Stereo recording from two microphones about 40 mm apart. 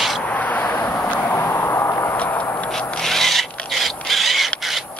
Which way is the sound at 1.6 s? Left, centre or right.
Left.